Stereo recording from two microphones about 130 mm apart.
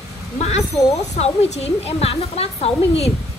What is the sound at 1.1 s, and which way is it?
A woman's voice, 55° left (ahead or behind).